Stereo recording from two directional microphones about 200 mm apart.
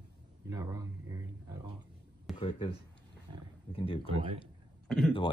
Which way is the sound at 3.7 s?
25° left (ahead or behind).